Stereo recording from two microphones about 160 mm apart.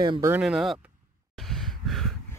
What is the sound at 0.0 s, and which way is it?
Speech, 25° right (ahead or behind).